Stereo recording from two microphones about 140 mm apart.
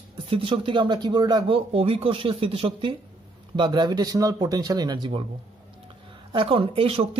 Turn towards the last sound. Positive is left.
turn(degrees=-40)  # may be behind; listen again after turning